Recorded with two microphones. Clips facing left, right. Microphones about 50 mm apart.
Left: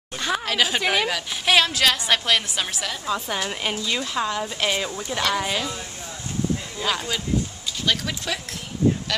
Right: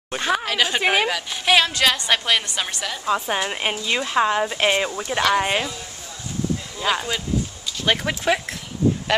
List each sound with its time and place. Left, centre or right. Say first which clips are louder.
0.2 s speech: right 3 dB; centre
0.5 s a woman's voice: right 1 dB; centre
0.8 s speech: right 3 dB; centre
1.1 s a woman's voice: right 1 dB; centre
3.3 s a woman's voice: right 3 dB; right
6.8 s speech: right 4 dB; centre
7.8 s speech: right 5 dB; right